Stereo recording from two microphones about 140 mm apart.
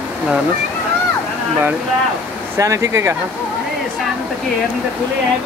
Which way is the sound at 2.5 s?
20° right (ahead or behind).